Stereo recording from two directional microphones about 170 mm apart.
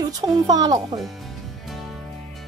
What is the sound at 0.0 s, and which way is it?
Speech, 20° right (ahead or behind).